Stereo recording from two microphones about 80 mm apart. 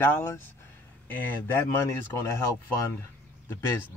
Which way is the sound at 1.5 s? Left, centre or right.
Left.